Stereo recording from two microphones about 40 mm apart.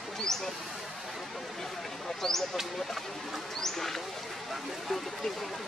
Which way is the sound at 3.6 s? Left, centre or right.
Centre.